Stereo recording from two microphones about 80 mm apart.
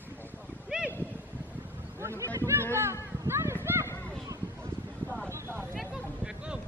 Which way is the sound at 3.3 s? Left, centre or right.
Right.